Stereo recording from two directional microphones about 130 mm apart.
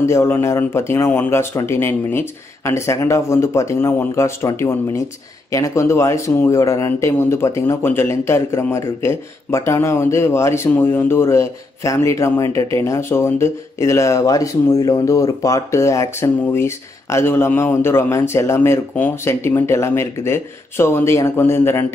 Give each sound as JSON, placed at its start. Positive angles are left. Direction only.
{"t": 0.0, "sound": "speech", "side_deg": 20}